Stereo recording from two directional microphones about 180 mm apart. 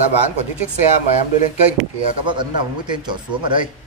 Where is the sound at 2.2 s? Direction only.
25° right (ahead or behind).